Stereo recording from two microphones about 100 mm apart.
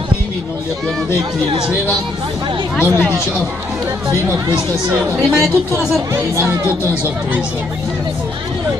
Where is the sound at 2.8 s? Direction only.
15° right (ahead or behind).